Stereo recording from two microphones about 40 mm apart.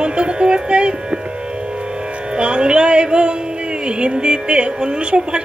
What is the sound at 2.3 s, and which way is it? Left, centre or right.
Music, right.